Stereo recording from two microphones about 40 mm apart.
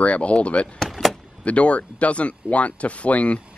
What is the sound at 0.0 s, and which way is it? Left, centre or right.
Speech, left.